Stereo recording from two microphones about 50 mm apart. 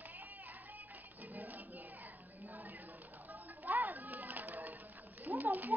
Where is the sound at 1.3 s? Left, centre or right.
Right.